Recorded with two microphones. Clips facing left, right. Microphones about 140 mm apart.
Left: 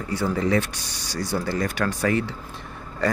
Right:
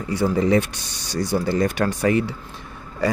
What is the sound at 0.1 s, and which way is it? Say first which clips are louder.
Speech: right 4 dB; 15° right (ahead or behind).